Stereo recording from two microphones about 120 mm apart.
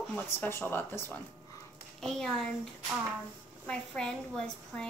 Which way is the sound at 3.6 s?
5° left (ahead or behind).